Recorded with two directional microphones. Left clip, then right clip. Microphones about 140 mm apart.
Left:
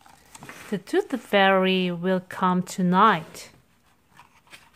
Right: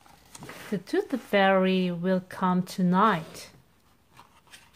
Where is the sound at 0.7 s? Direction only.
20° left (ahead or behind).